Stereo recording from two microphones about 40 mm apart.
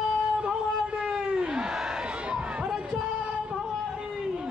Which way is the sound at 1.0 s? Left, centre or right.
Right.